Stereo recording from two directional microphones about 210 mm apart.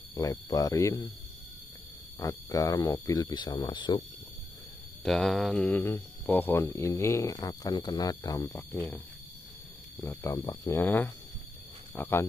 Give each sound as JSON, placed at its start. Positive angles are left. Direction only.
{"t": 0.1, "sound": "speech", "side_deg": 15}
{"t": 2.1, "sound": "speech", "side_deg": 15}
{"t": 5.0, "sound": "speech", "side_deg": 0}